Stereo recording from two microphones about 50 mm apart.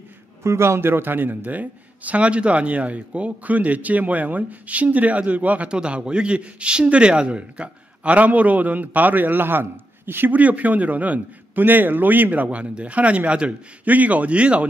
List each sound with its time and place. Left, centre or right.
0.4 s a man's voice: right
10.3 s a man's voice: right